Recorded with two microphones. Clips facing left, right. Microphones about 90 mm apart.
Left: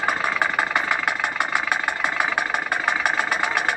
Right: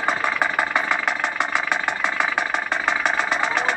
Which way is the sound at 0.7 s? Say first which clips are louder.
Right 1 dB; 60° left (ahead or behind).